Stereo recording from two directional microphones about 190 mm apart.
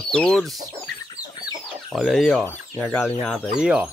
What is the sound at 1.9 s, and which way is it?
Speech, centre (ahead or behind).